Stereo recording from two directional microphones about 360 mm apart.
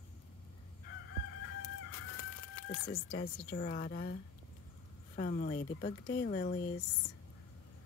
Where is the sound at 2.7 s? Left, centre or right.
Left.